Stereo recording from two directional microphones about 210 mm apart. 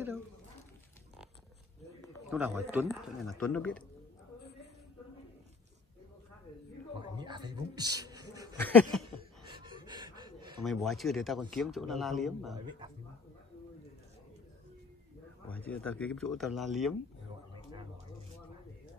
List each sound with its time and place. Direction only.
2.2 s speech: centre (ahead or behind)
7.0 s a sound: 20° right (ahead or behind)
8.5 s a sound: 10° left (ahead or behind)
9.6 s gasp: 20° right (ahead or behind)
10.6 s speech: centre (ahead or behind)
15.5 s speech: 5° left (ahead or behind)